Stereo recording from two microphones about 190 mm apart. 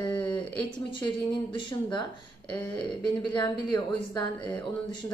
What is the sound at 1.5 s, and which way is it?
A woman's voice, 25° left (ahead or behind).